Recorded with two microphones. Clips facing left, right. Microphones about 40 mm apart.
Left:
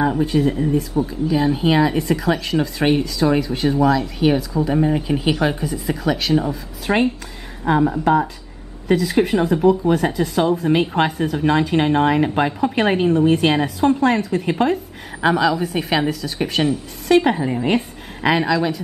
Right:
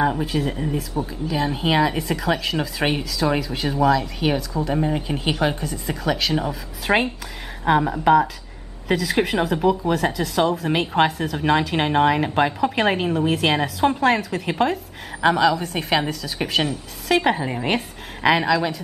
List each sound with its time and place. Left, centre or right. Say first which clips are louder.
0.0 s speech: left 4 dB; centre
6.9 s a woman's voice: left 1 dB; centre
7.7 s speech: even; right
8.8 s speech: left 4 dB; centre
11.3 s a woman's voice: left 4 dB; centre
17.2 s a woman's voice: left 2 dB; centre